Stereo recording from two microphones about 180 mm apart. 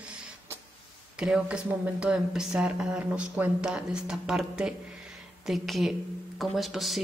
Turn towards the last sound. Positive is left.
turn(degrees=0)  # may be behind; listen again after turning